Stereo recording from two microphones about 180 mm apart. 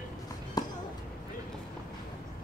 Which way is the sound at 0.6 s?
20° left (ahead or behind).